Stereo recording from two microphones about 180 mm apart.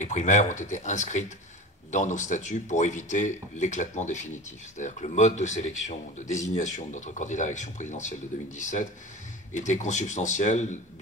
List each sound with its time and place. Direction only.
0.0 s a man's voice: 40° left (ahead or behind)